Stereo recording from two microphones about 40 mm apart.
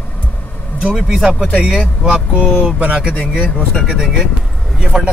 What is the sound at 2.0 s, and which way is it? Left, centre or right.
Speech, right.